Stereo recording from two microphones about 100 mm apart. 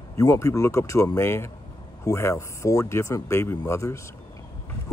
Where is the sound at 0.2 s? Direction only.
30° left (ahead or behind).